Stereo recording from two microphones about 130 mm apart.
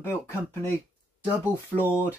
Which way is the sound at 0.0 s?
20° left (ahead or behind).